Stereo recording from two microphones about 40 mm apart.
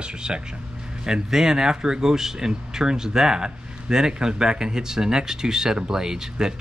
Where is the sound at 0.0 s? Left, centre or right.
Right.